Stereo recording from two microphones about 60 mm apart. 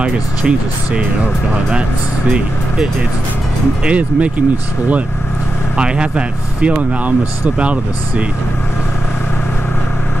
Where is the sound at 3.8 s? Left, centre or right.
Right.